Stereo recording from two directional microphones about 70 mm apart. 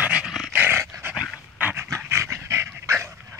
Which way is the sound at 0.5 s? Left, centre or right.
Right.